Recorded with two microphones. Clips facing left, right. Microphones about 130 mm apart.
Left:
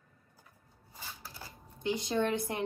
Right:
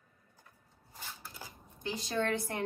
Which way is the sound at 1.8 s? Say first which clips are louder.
Left 3 dB; 20° left (ahead or behind).